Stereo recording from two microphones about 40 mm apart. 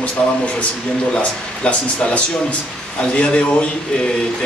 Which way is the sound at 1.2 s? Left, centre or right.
Left.